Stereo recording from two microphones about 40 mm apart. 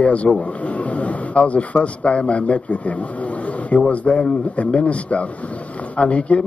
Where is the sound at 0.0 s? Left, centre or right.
Left.